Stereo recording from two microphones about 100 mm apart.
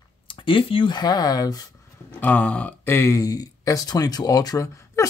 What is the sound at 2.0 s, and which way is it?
A man's voice, 15° left (ahead or behind).